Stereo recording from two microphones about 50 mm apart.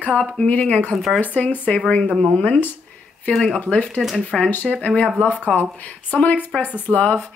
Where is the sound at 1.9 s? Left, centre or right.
Left.